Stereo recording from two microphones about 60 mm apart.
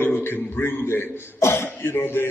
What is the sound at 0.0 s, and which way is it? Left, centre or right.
A man's voice, left.